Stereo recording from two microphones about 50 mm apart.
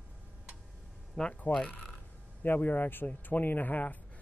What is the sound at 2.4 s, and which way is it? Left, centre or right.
A man's voice, left.